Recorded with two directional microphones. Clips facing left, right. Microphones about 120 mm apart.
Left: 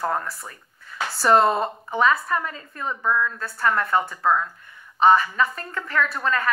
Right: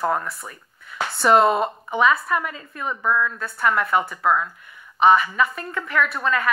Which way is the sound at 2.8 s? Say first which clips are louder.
Right 1 dB; 10° right (ahead or behind).